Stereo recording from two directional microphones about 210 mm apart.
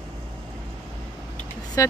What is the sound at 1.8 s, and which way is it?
Speech, 15° left (ahead or behind).